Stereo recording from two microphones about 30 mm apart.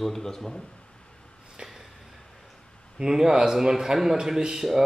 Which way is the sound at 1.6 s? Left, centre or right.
Right.